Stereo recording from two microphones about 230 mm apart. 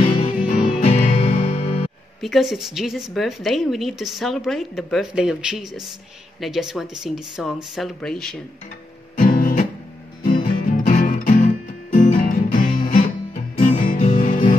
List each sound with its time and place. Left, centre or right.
0.2 s music: left
2.2 s a woman's voice: centre
9.1 s guitar: left
10.6 s music: left